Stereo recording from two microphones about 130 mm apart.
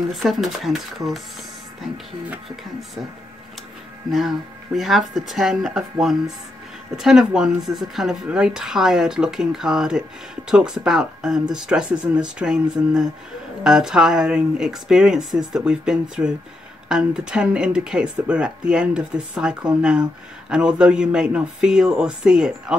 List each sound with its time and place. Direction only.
0.1 s speech: centre (ahead or behind)
4.1 s speech: centre (ahead or behind)